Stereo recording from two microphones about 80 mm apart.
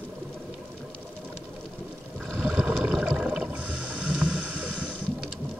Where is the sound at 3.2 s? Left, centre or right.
Centre.